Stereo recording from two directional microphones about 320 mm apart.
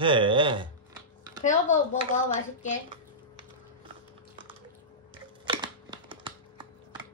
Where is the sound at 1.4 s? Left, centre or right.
Left.